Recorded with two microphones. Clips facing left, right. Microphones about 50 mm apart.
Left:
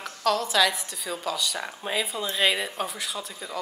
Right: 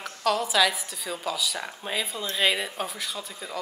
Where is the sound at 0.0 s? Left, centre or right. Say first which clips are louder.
Even; centre.